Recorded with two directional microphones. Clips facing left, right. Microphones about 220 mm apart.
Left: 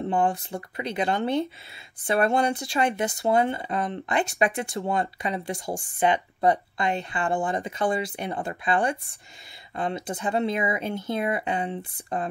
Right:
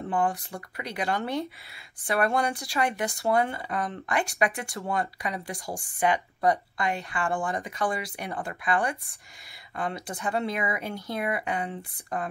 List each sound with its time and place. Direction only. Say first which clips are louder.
0.0 s speech: left 3 dB; 25° left (ahead or behind)